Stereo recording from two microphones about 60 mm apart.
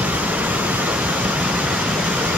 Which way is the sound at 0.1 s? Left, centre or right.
Right.